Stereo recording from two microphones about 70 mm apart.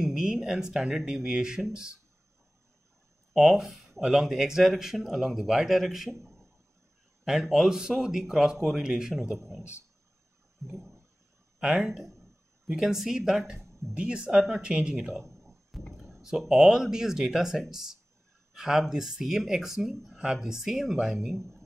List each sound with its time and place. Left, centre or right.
0.0 s speech: centre
3.3 s speech: centre
7.2 s speech: centre
10.6 s toilet flush: right
11.6 s speech: centre
12.2 s a sound: centre
13.9 s speech: centre
15.2 s a sound: centre
16.0 s speech: centre